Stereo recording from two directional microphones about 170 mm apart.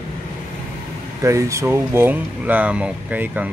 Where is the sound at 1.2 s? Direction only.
15° right (ahead or behind).